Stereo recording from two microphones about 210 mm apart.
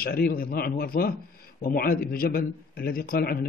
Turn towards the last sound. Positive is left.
turn(degrees=45)  # may be behind; listen again after turning